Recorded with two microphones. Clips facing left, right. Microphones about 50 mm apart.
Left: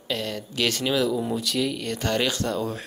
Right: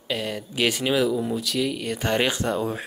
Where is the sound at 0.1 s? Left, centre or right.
Centre.